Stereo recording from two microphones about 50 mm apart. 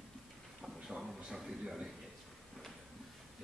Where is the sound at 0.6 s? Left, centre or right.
Centre.